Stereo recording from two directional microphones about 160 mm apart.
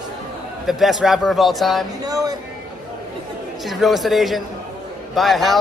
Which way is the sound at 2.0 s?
25° right (ahead or behind).